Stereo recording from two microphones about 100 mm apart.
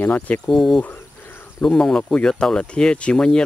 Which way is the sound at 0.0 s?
15° left (ahead or behind).